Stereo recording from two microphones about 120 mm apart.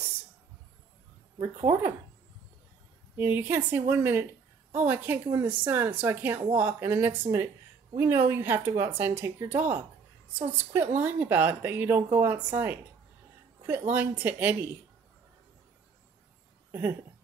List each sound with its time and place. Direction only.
1.6 s speech: 20° right (ahead or behind)
3.2 s a woman's voice: 15° right (ahead or behind)